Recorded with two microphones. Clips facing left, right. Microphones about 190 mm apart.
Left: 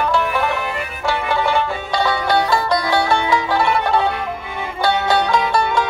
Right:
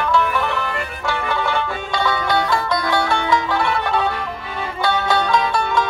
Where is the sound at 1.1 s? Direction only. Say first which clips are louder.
Left 3 dB; 35° left (ahead or behind).